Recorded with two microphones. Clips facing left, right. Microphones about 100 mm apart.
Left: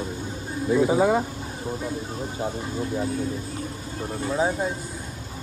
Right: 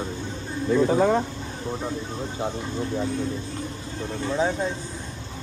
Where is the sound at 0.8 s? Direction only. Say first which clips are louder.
Even; 10° left (ahead or behind).